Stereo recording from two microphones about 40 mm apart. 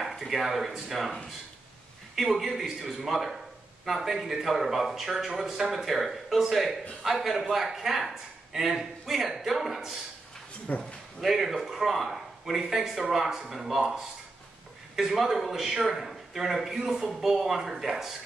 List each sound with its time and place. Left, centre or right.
0.0 s speech: centre
2.1 s a man's voice: centre
10.7 s speech: left
11.1 s a man's voice: centre